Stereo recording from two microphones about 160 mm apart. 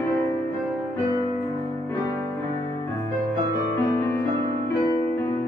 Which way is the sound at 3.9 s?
15° left (ahead or behind).